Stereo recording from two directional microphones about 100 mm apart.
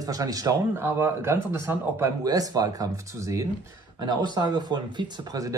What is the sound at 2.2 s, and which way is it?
Speech, 40° right (ahead or behind).